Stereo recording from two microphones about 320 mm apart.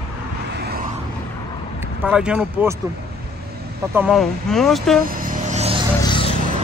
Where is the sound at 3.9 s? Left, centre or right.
Centre.